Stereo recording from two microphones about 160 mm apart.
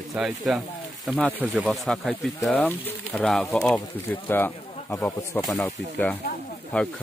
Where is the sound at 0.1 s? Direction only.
Centre (ahead or behind); by 5.4 s 20° left (ahead or behind).